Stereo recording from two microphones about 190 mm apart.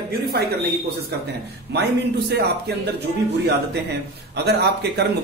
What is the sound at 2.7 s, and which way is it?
A man's voice, 60° right (ahead or behind).